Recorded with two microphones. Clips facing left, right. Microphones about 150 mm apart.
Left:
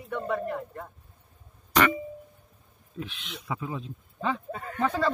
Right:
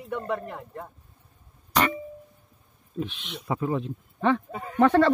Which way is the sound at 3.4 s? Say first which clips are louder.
Right 7 dB; 45° right (ahead or behind).